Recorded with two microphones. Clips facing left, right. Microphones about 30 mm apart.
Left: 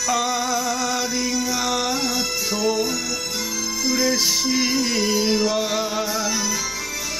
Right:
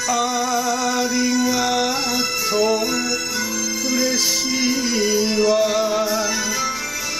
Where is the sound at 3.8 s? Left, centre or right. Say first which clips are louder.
Left 1 dB; centre.